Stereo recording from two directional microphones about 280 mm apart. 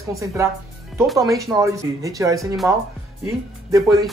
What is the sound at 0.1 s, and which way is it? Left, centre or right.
Speech, centre.